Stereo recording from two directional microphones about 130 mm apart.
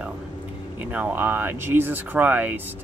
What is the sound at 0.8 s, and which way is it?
Speech, 10° right (ahead or behind).